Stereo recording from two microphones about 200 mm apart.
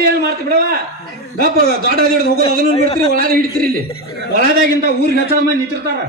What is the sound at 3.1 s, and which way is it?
Speech, 45° right (ahead or behind).